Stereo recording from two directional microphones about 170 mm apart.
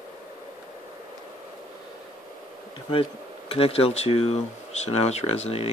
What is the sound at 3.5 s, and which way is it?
Speech, 35° left (ahead or behind).